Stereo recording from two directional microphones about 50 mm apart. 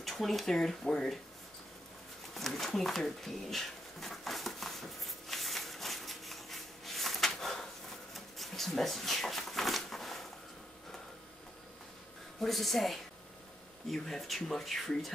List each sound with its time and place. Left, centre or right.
0.0 s speech: centre
2.3 s a sound: centre
12.4 s speech: centre